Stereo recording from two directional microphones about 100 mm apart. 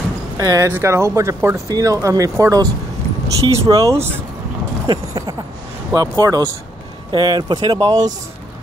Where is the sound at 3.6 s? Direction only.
35° right (ahead or behind).